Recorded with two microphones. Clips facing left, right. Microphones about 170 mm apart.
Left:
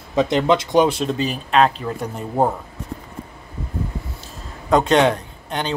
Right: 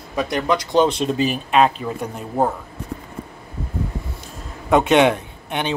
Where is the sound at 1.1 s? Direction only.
10° right (ahead or behind).